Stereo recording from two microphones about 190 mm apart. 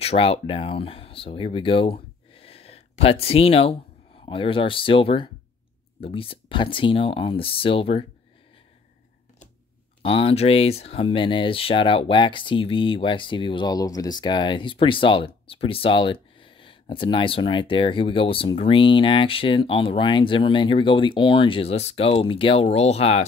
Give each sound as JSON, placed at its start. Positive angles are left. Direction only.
{"t": 0.0, "sound": "speech", "side_deg": 30}
{"t": 10.0, "sound": "speech", "side_deg": 30}